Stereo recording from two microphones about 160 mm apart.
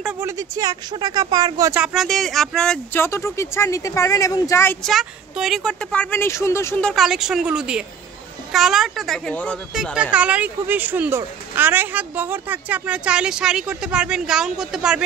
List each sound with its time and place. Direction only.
0.2 s speech: 20° right (ahead or behind)
1.8 s speech: 5° right (ahead or behind)
3.0 s speech: 15° left (ahead or behind)
4.8 s speech: centre (ahead or behind); by 6.8 s 15° left (ahead or behind)
6.8 s speech: centre (ahead or behind)
10.1 s speech: 10° right (ahead or behind)